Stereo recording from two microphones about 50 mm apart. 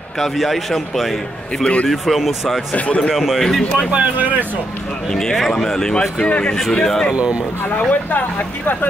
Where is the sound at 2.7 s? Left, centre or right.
Left.